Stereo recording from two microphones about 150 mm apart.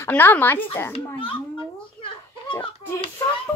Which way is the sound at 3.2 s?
25° left (ahead or behind).